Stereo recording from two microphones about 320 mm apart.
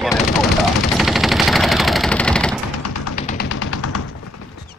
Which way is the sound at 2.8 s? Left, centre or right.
Left.